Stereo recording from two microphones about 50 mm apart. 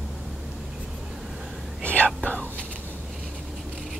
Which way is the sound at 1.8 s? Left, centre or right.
Left.